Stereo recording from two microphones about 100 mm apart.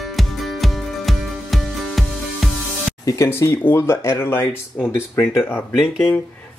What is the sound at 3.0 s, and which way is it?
Speech, 35° left (ahead or behind).